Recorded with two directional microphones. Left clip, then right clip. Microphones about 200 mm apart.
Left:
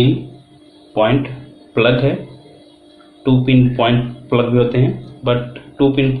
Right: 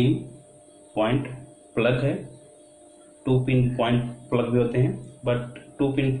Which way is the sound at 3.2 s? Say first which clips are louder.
Left 9 dB; 20° left (ahead or behind).